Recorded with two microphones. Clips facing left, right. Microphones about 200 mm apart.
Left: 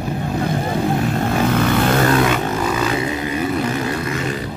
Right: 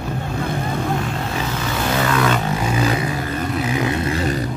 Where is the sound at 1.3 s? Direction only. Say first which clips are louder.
Left 10 dB; 55° left (ahead or behind).